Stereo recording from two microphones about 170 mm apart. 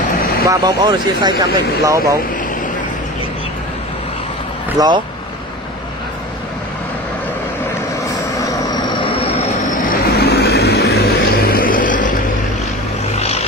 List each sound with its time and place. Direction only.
0.5 s speech: 20° right (ahead or behind)
4.7 s speech: 25° right (ahead or behind)
8.4 s vehicle: 20° left (ahead or behind)
9.2 s vehicle: 35° left (ahead or behind)
9.8 s vehicle: 65° left (ahead or behind); by 12.2 s 50° left (ahead or behind)